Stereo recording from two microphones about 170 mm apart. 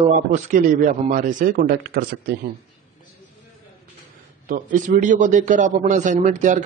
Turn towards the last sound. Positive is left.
turn(degrees=-45)  # may be behind; listen again after turning